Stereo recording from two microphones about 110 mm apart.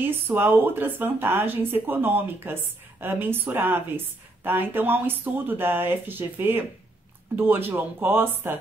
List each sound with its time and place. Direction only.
0.0 s speech: 20° right (ahead or behind)